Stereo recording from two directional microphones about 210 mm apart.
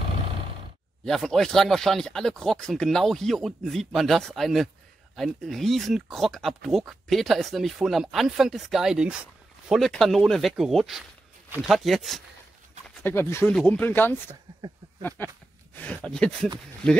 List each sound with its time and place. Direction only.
1.0 s speech: centre (ahead or behind)
13.0 s speech: 10° left (ahead or behind)